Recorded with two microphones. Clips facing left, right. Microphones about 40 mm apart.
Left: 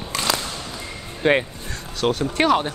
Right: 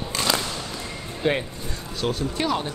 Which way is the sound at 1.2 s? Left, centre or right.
Left.